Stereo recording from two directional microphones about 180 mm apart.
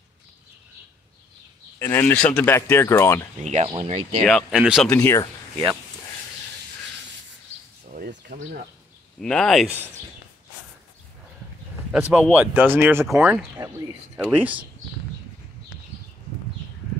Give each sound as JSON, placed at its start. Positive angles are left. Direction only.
{"t": 1.8, "sound": "speech", "side_deg": 10}
{"t": 3.4, "sound": "speech", "side_deg": -35}
{"t": 4.2, "sound": "speech", "side_deg": 0}
{"t": 4.9, "sound": "speech", "side_deg": 20}
{"t": 8.3, "sound": "speech", "side_deg": -50}
{"t": 9.2, "sound": "speech", "side_deg": 5}
{"t": 11.9, "sound": "speech", "side_deg": -5}
{"t": 14.1, "sound": "speech", "side_deg": -10}